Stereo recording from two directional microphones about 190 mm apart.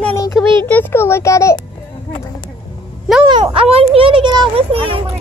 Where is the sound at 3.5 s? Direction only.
30° right (ahead or behind).